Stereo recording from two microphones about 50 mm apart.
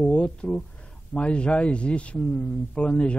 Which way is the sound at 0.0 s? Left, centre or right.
Left.